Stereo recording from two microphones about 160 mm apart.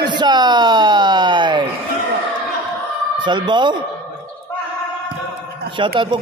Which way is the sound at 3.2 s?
30° right (ahead or behind).